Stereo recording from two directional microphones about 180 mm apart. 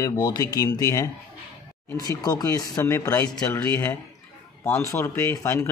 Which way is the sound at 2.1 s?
20° left (ahead or behind).